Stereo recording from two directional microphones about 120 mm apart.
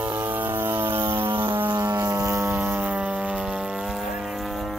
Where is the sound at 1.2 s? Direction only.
45° right (ahead or behind).